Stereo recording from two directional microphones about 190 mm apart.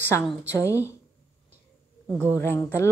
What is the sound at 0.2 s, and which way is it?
Speech, 5° right (ahead or behind).